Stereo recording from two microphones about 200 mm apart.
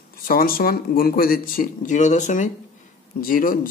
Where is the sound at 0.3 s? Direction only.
45° left (ahead or behind).